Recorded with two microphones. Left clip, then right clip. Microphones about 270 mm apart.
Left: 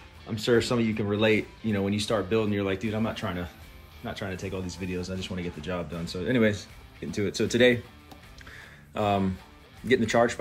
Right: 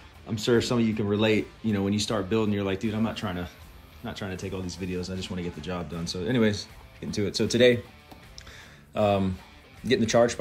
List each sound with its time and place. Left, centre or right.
0.3 s speech: centre
8.9 s speech: centre